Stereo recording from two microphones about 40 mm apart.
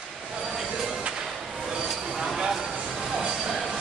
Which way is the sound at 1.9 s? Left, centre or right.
Centre.